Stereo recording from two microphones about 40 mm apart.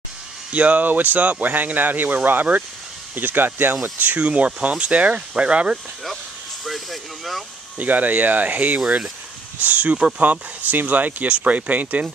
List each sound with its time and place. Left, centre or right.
0.5 s speech: right
4.0 s speech: right
6.6 s speech: centre
7.7 s speech: right
9.9 s speech: right